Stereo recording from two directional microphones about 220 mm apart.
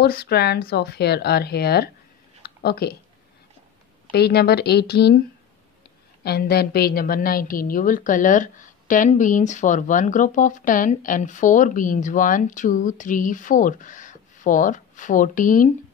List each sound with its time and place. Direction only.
0.0 s speech: 45° left (ahead or behind)
2.4 s a sound: 45° left (ahead or behind)
4.1 s speech: 45° left (ahead or behind)
6.2 s a woman's voice: 45° left (ahead or behind)